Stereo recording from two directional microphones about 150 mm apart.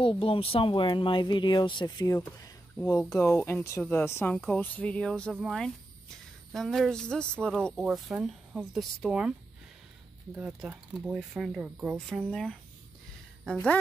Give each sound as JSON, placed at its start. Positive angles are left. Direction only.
{"t": 0.0, "sound": "speech", "side_deg": 35}
{"t": 1.9, "sound": "speech", "side_deg": 20}
{"t": 10.3, "sound": "speech", "side_deg": -10}